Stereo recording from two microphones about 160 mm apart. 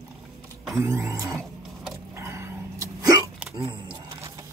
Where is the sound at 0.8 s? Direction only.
20° right (ahead or behind).